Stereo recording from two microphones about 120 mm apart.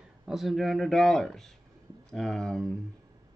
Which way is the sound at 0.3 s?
Centre (ahead or behind).